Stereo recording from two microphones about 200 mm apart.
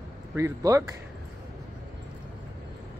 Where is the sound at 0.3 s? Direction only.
15° right (ahead or behind).